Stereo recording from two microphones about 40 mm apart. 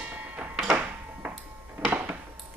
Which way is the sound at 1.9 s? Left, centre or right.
Right.